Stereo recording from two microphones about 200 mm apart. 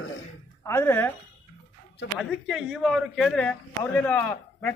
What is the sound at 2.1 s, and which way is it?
A man's voice, 5° right (ahead or behind).